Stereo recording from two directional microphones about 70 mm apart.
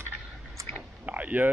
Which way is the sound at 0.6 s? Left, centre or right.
Right.